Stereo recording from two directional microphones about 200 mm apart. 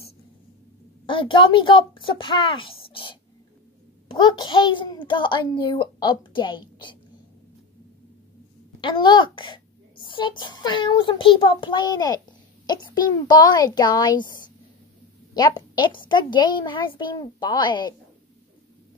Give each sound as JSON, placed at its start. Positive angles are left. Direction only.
{"t": 1.0, "sound": "a child's voice", "side_deg": 25}
{"t": 8.8, "sound": "a woman's voice", "side_deg": 25}